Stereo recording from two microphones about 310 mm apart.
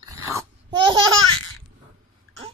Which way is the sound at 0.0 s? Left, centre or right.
Centre.